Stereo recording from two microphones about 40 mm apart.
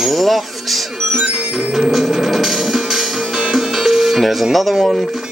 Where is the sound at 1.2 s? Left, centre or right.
Centre.